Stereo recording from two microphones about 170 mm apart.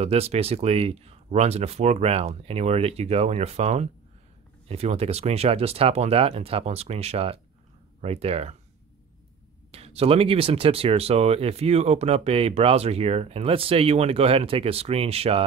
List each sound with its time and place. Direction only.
0.0 s speech: 35° right (ahead or behind)
9.7 s speech: 35° right (ahead or behind)